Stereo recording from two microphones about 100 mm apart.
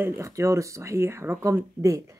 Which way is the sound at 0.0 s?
30° right (ahead or behind).